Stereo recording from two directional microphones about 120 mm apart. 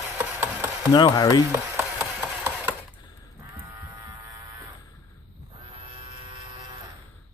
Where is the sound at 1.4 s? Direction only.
20° right (ahead or behind).